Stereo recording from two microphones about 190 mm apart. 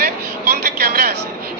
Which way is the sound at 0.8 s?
55° right (ahead or behind).